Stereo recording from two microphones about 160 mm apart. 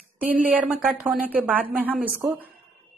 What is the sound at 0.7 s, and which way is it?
A woman's voice, 5° right (ahead or behind).